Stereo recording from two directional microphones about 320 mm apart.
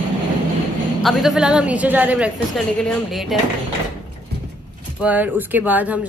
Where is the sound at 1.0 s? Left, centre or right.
Centre.